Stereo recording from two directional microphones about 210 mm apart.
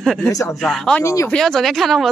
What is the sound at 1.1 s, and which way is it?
Speech, 15° left (ahead or behind).